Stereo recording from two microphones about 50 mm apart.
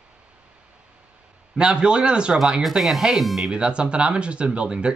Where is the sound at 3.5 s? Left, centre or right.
Centre.